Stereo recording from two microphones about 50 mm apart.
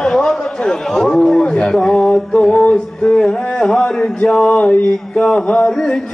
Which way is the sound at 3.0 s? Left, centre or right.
Centre.